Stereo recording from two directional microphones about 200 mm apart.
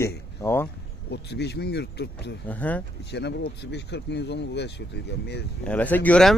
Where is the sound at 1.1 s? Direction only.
55° left (ahead or behind).